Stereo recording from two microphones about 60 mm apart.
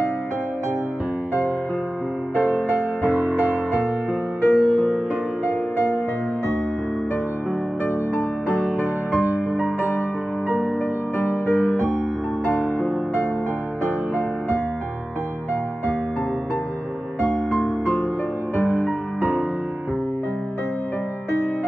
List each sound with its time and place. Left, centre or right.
2.3 s music: right
4.5 s music: centre
9.2 s music: right
12.7 s music: centre
17.5 s music: centre
18.6 s music: right